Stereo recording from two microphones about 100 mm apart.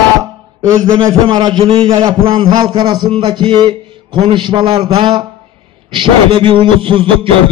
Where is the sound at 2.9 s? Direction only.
45° right (ahead or behind).